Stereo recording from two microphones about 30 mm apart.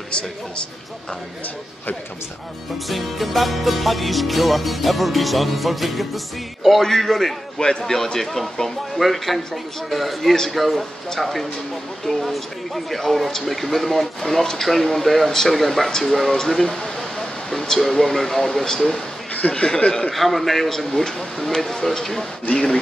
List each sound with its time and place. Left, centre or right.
2.9 s music: centre
6.8 s speech: centre
7.5 s a man's voice: left
7.8 s speech: centre
9.0 s music: centre
12.1 s speech: centre
15.5 s music: centre
16.4 s speech: centre
17.2 s a sound: centre
18.0 s speech: centre
19.5 s a man's voice: left
20.1 s music: centre
21.5 s speech: centre